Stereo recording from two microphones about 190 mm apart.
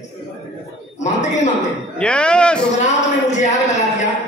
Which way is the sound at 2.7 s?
40° left (ahead or behind).